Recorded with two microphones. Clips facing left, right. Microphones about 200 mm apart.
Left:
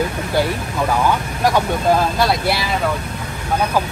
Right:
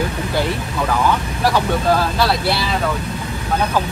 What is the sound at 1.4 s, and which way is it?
Speech, 20° left (ahead or behind).